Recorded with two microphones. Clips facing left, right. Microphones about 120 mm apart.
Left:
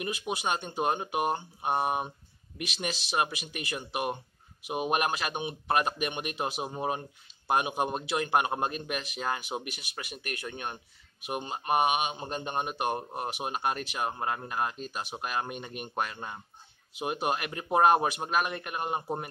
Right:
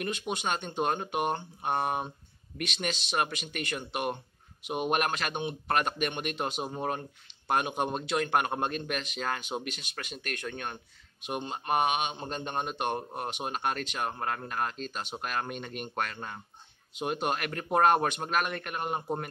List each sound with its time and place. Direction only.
0.0 s speech: 10° left (ahead or behind)